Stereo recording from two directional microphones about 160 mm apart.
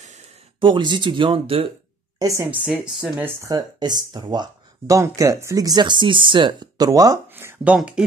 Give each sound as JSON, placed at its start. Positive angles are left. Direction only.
{"t": 0.6, "sound": "speech", "side_deg": -30}
{"t": 2.1, "sound": "speech", "side_deg": -20}
{"t": 3.3, "sound": "speech", "side_deg": -20}